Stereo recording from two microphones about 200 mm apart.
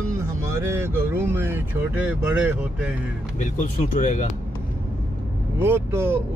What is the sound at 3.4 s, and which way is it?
Speech, 40° left (ahead or behind).